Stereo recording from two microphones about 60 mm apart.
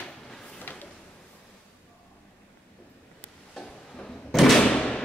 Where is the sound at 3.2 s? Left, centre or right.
Centre.